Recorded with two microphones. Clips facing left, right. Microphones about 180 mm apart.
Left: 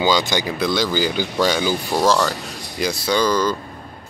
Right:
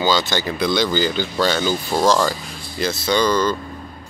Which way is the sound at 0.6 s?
5° left (ahead or behind).